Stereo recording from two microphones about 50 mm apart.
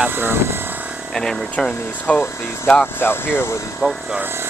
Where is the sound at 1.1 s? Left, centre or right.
Centre.